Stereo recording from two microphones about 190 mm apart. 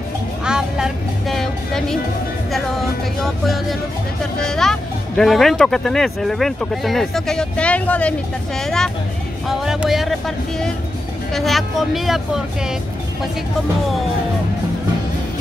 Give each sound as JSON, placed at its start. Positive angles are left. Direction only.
{"t": 0.5, "sound": "music", "side_deg": -5}
{"t": 3.2, "sound": "speech", "side_deg": 0}